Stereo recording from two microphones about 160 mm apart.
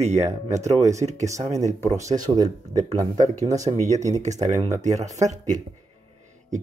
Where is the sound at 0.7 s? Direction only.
20° right (ahead or behind).